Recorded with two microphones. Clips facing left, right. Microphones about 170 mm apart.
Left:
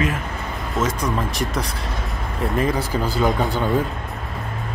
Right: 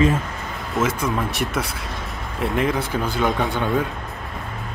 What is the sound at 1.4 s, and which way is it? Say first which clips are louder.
Speech: even; 5° right (ahead or behind).